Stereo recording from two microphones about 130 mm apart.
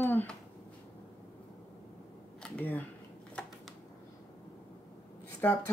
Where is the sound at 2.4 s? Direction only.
10° left (ahead or behind).